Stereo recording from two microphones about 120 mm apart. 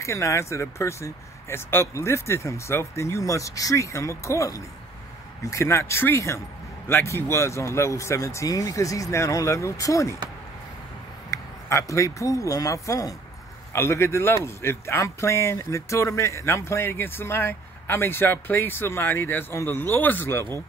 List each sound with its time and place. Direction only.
0.0 s a man's voice: 25° left (ahead or behind)
11.2 s a man's voice: 25° left (ahead or behind)